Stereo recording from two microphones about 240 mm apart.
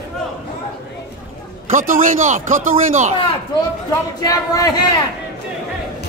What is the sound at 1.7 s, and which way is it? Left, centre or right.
Speech, right.